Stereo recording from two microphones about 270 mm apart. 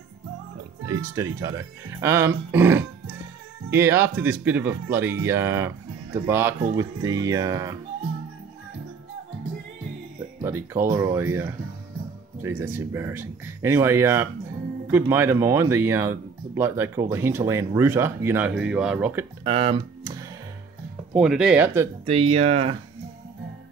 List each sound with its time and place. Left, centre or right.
0.8 s speech: centre
10.4 s speech: centre
19.4 s music: centre
21.1 s speech: centre
22.0 s speech: right